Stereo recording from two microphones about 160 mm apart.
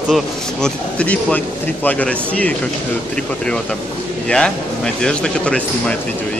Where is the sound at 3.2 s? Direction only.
5° left (ahead or behind).